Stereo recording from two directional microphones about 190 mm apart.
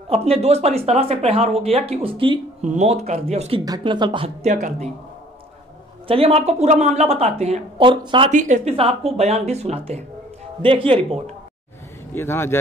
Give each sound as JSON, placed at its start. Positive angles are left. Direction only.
{"t": 0.1, "sound": "speech", "side_deg": -30}
{"t": 2.6, "sound": "speech", "side_deg": -35}
{"t": 3.6, "sound": "speech", "side_deg": -20}
{"t": 4.5, "sound": "speech", "side_deg": -40}
{"t": 6.0, "sound": "speech", "side_deg": -30}
{"t": 8.3, "sound": "speech", "side_deg": -40}
{"t": 12.1, "sound": "speech", "side_deg": 10}